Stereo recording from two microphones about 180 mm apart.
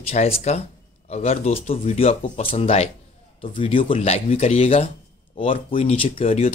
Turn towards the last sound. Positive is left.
turn(degrees=35)  # may be behind; listen again after turning